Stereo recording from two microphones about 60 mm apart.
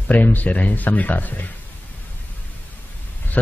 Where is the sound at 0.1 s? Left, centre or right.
Left.